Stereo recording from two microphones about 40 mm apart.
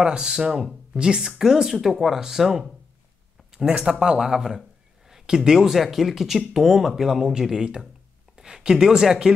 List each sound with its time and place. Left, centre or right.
0.0 s speech: right
0.4 s speech: centre
0.9 s speech: right
3.5 s speech: right